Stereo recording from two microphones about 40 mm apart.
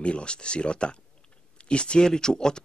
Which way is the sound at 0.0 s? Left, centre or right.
Left.